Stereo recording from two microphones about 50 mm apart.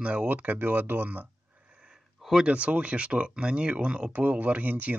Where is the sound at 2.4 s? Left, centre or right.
Right.